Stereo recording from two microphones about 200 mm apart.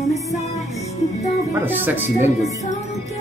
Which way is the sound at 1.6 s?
10° right (ahead or behind).